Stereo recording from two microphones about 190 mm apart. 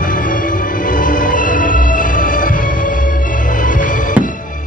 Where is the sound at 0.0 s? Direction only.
45° left (ahead or behind).